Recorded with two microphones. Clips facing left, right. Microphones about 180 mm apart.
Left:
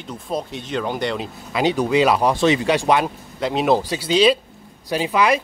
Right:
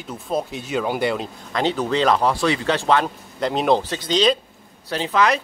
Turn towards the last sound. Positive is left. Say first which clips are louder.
# left 1 dB
turn(degrees=10)  # may be behind; listen again after turning